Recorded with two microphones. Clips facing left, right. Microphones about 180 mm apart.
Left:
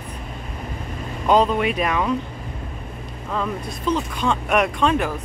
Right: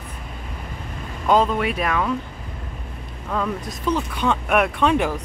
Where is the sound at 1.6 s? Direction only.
Centre (ahead or behind).